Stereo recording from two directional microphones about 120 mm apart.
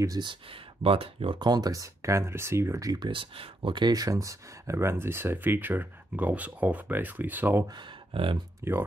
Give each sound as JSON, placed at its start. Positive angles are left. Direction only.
{"t": 0.0, "sound": "speech", "side_deg": -35}
{"t": 1.4, "sound": "speech", "side_deg": -35}
{"t": 7.7, "sound": "speech", "side_deg": -45}
{"t": 8.6, "sound": "speech", "side_deg": -20}